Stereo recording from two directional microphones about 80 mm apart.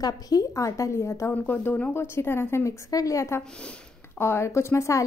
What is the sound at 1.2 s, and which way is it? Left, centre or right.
Speech, left.